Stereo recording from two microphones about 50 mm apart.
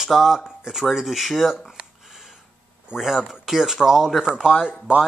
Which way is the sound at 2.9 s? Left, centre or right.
Centre.